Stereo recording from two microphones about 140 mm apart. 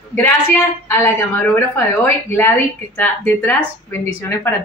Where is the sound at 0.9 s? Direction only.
15° left (ahead or behind).